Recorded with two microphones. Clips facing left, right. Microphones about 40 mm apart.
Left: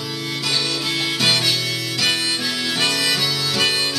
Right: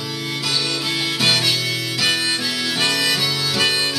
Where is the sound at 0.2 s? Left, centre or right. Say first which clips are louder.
Right 1 dB; centre.